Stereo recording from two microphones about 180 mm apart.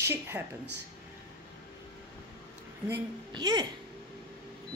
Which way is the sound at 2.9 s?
25° right (ahead or behind).